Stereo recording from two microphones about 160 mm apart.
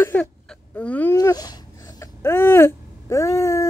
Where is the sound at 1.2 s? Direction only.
25° left (ahead or behind).